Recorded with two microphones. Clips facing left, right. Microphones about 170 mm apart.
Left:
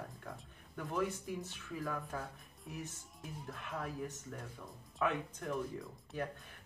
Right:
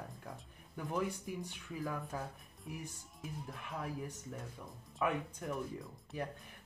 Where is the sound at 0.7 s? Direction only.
15° right (ahead or behind).